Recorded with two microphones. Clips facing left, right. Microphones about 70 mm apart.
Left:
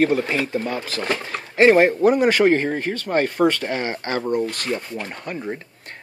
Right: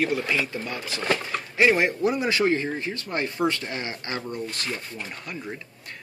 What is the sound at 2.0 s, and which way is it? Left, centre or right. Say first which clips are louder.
Speech: left 7 dB; left.